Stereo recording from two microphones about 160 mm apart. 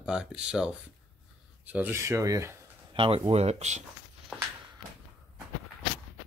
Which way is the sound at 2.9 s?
35° right (ahead or behind).